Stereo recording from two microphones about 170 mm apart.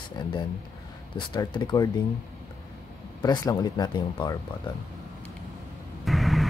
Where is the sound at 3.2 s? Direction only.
25° left (ahead or behind).